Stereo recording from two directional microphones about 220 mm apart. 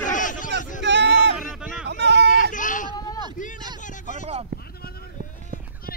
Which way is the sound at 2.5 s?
35° left (ahead or behind).